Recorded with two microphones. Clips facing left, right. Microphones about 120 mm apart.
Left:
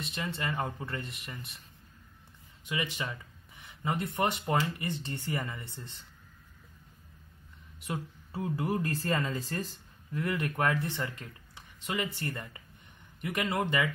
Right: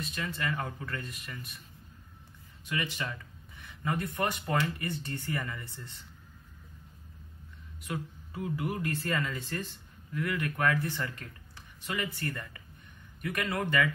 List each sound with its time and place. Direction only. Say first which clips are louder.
0.0 s speech: even; 25° left (ahead or behind)
2.7 s speech: even; 15° left (ahead or behind)
7.8 s speech: even; 30° left (ahead or behind)
10.1 s speech: left 1 dB; 25° left (ahead or behind)